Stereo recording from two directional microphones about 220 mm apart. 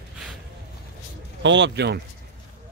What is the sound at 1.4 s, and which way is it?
Speech, 55° right (ahead or behind).